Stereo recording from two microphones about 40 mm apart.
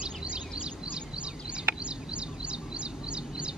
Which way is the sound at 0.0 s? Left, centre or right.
Right.